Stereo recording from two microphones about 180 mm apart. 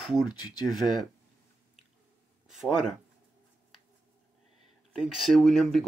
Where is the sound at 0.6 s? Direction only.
Centre (ahead or behind).